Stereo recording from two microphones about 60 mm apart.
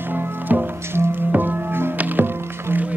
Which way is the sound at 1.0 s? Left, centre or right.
Right.